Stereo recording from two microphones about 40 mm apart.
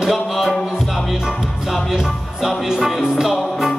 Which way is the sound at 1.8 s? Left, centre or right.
Centre.